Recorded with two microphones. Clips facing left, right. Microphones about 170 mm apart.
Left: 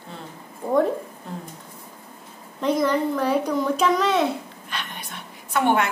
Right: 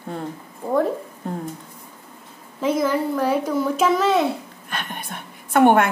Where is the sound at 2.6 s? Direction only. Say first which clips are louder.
Right 1 dB; 5° right (ahead or behind).